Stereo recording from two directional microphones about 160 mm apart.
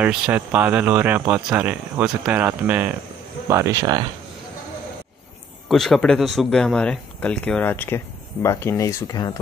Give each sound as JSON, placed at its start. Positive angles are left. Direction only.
{"t": 0.0, "sound": "speech", "side_deg": -10}
{"t": 5.7, "sound": "speech", "side_deg": 0}